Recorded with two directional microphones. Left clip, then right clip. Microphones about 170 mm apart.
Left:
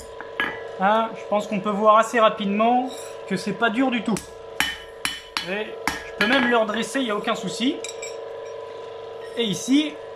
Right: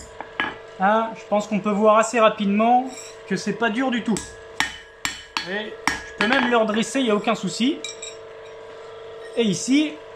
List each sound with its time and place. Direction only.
0.7 s speech: centre (ahead or behind)
4.6 s hammer: 15° right (ahead or behind)
6.2 s speech: 5° right (ahead or behind)
9.4 s speech: 5° right (ahead or behind)